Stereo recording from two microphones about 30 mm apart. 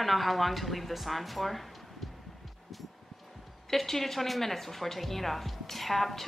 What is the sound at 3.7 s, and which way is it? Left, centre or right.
Speech, centre.